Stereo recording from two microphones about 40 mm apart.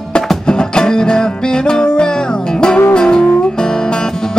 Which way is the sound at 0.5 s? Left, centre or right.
Left.